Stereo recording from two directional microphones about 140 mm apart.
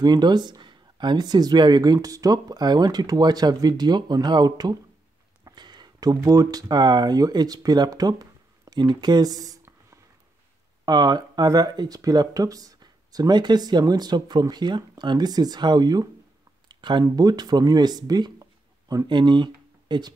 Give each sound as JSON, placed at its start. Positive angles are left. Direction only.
{"t": 0.0, "sound": "speech", "side_deg": -30}
{"t": 16.6, "sound": "a sound", "side_deg": -35}
{"t": 17.0, "sound": "speech", "side_deg": -30}